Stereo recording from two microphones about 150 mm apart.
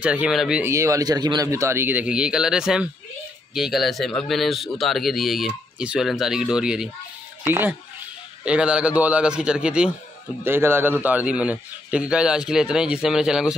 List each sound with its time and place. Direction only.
0.0 s a man's voice: 5° right (ahead or behind)
0.6 s a man's voice: 20° right (ahead or behind)